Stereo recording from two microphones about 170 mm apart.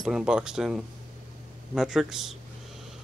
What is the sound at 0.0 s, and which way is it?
Speech, 5° right (ahead or behind).